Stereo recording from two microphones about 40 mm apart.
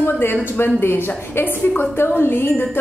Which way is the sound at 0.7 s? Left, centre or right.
Left.